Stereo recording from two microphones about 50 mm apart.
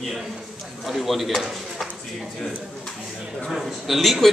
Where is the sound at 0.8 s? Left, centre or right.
Centre.